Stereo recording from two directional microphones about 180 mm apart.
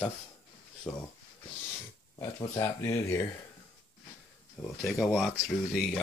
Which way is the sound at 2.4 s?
15° left (ahead or behind).